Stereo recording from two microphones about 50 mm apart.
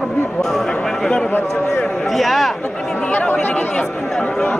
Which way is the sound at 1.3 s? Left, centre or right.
Left.